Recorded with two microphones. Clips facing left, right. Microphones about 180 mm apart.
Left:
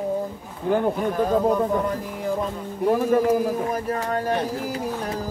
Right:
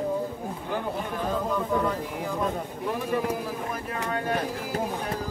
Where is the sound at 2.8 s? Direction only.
40° left (ahead or behind).